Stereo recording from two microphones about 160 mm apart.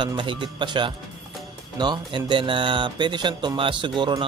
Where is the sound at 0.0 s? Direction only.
30° right (ahead or behind).